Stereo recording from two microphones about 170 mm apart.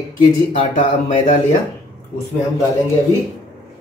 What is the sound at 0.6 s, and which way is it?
Speech, 30° left (ahead or behind).